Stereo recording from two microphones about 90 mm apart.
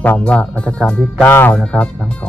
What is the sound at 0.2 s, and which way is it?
Speech, 15° left (ahead or behind).